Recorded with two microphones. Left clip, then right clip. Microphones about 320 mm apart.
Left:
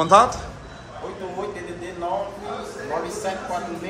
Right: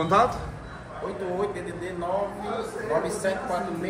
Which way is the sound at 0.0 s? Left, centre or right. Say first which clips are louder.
Left 6 dB; centre.